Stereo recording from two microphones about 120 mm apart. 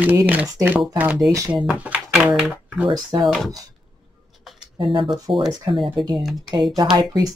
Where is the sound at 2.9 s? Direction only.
35° right (ahead or behind).